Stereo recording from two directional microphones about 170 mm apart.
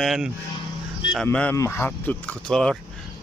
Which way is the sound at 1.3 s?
10° left (ahead or behind).